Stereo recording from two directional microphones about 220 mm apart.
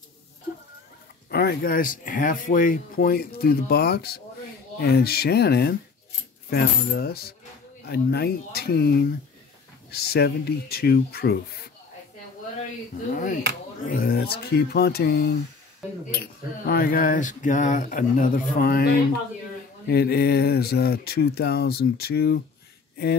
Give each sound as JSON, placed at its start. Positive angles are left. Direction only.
{"t": 1.3, "sound": "speech", "side_deg": 45}
{"t": 13.8, "sound": "speech", "side_deg": 40}